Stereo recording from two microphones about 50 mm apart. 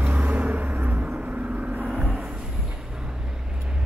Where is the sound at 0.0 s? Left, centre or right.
Right.